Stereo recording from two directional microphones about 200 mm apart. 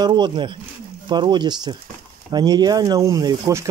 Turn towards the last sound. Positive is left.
turn(degrees=-15)  # may be behind; listen again after turning